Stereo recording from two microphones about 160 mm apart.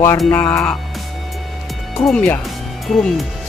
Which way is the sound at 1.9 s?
5° left (ahead or behind).